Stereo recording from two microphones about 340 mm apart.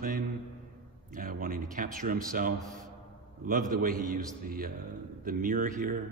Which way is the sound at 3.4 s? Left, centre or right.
Right.